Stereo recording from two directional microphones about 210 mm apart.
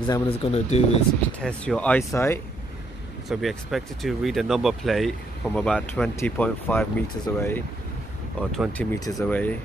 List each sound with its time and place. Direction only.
0.0 s speech: 25° left (ahead or behind)
1.4 s speech: 5° left (ahead or behind)
3.3 s speech: centre (ahead or behind)